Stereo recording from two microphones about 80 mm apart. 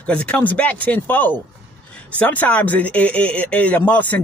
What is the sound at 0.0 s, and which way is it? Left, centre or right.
Speech, centre.